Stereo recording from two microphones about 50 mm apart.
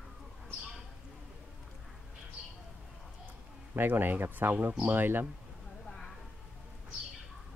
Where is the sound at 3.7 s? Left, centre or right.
Right.